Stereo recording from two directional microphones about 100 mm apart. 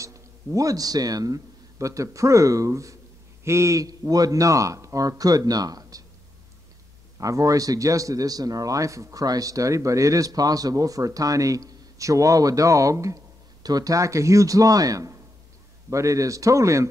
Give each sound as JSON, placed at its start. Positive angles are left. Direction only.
{"t": 0.0, "sound": "a man's voice", "side_deg": -30}
{"t": 7.2, "sound": "speech", "side_deg": -35}